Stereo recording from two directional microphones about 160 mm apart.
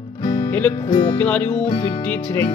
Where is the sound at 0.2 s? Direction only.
25° left (ahead or behind).